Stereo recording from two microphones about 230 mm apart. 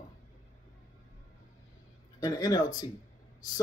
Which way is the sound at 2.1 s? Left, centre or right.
Centre.